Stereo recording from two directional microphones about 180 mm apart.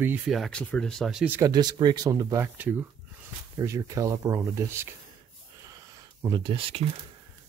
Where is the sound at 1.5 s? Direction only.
25° right (ahead or behind).